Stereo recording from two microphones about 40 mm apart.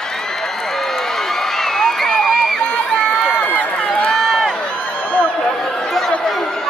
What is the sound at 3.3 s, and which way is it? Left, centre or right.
Run, left.